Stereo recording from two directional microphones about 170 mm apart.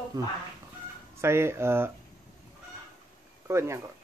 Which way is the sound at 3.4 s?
15° right (ahead or behind).